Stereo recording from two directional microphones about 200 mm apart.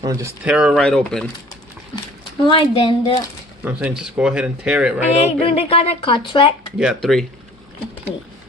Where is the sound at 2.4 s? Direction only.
25° left (ahead or behind).